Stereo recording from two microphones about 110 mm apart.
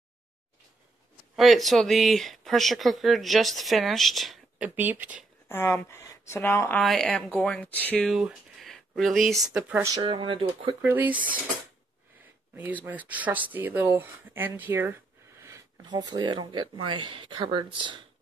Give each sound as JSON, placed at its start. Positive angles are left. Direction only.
{"t": 1.3, "sound": "speech", "side_deg": 0}
{"t": 4.6, "sound": "speech", "side_deg": -15}
{"t": 5.5, "sound": "speech", "side_deg": 20}
{"t": 6.8, "sound": "speech", "side_deg": 0}
{"t": 8.0, "sound": "speech", "side_deg": -5}
{"t": 10.0, "sound": "speech", "side_deg": -50}
{"t": 10.8, "sound": "speech", "side_deg": -20}
{"t": 12.5, "sound": "speech", "side_deg": -15}
{"t": 15.8, "sound": "speech", "side_deg": -40}